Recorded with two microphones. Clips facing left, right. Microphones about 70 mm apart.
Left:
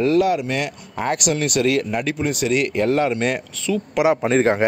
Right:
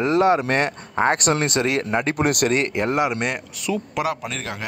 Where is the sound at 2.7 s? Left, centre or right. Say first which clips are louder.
Left 3 dB; right.